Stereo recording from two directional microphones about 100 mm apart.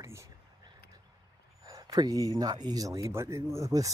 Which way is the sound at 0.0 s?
30° right (ahead or behind).